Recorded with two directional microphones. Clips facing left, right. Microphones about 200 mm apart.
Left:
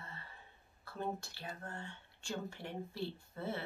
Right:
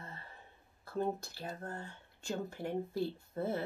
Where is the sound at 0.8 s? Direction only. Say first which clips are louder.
Right 5 dB; 40° right (ahead or behind).